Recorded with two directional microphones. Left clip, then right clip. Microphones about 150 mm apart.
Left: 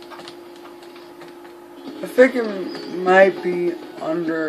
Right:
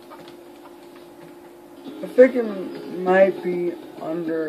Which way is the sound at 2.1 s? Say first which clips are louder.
Even; 10° left (ahead or behind).